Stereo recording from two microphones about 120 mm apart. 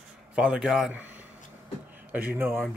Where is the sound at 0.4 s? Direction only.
5° right (ahead or behind).